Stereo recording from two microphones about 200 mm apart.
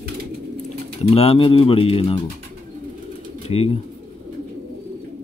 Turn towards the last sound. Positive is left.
turn(degrees=30)  # may be behind; listen again after turning